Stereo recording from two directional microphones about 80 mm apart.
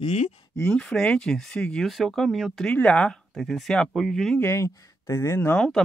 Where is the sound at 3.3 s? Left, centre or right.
Centre.